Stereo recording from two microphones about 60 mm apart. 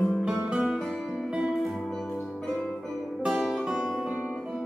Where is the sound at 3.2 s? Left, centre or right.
Centre.